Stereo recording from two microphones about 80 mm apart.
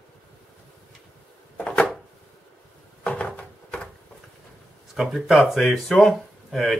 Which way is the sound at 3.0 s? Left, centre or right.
Centre.